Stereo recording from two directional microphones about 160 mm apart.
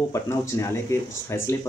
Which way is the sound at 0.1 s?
15° left (ahead or behind).